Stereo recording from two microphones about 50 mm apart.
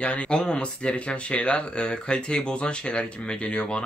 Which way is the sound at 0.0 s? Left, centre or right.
Left.